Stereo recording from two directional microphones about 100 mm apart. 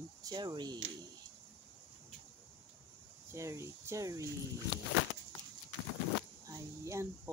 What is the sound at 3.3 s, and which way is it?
Speech, 30° right (ahead or behind).